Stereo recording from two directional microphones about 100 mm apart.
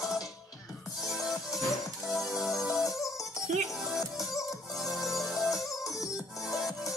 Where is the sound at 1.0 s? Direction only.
5° right (ahead or behind).